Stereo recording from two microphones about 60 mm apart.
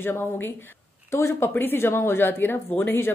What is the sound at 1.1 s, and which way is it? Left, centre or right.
Speech, left.